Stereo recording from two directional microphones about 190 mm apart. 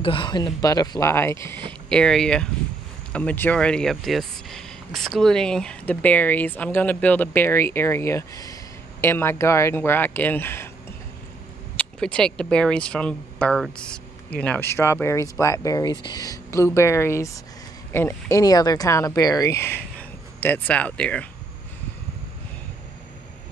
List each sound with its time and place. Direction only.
0.0 s speech: 25° left (ahead or behind)
11.7 s speech: 5° left (ahead or behind)